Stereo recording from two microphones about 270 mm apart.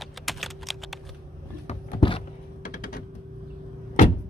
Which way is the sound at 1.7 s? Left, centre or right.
Centre.